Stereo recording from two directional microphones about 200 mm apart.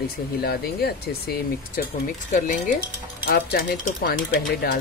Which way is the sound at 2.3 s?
40° left (ahead or behind).